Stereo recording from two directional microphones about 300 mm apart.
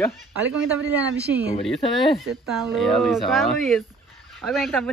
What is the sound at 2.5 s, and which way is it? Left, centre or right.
Speech, centre.